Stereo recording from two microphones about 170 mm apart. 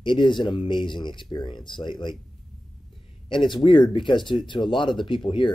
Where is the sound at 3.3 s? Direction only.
30° left (ahead or behind).